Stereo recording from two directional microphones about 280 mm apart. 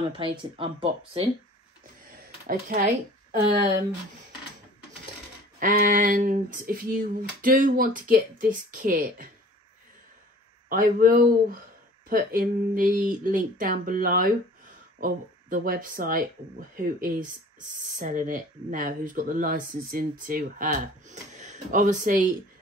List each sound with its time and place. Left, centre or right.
0.1 s speech: centre
2.4 s speech: right
5.6 s speech: right
10.7 s speech: right